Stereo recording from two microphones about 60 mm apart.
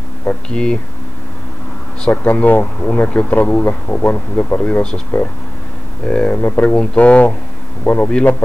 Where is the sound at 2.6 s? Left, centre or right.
Centre.